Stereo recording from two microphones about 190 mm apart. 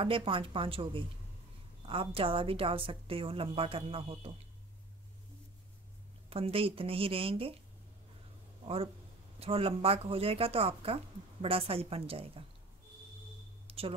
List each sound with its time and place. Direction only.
0.0 s a woman's voice: 25° right (ahead or behind)
6.3 s a woman's voice: 30° right (ahead or behind)
9.4 s speech: 30° right (ahead or behind)
13.7 s a sound: 30° right (ahead or behind)